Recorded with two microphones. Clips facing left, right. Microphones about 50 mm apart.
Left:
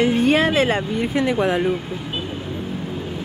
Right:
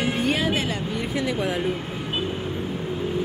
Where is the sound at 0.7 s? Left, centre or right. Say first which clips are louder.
Left 6 dB; left.